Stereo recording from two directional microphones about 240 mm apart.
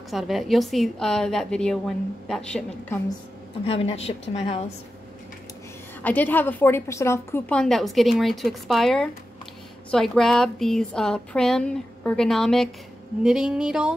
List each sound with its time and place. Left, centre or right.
0.1 s a woman's voice: centre
3.6 s a woman's voice: left
6.0 s a woman's voice: centre